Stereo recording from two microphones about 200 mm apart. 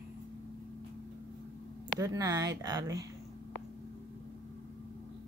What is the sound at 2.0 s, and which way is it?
Speech, 15° right (ahead or behind).